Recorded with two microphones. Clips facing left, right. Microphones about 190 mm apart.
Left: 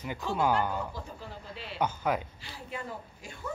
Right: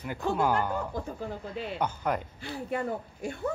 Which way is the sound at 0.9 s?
50° right (ahead or behind).